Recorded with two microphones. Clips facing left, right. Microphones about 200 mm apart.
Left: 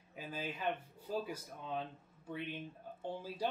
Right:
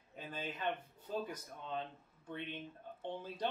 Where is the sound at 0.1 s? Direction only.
5° left (ahead or behind).